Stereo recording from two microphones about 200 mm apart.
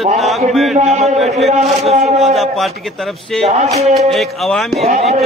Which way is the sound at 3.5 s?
35° right (ahead or behind).